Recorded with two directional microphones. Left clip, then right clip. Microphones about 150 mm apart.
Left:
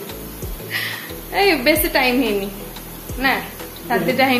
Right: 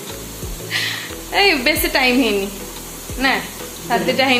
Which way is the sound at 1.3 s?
20° right (ahead or behind).